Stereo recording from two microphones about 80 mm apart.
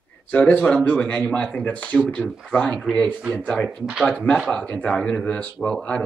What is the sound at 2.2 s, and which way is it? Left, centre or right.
Speech, centre.